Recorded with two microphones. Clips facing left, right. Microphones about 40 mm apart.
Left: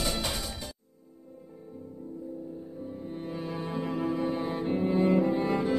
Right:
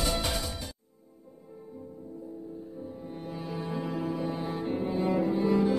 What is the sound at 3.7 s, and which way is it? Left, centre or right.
Cello, centre.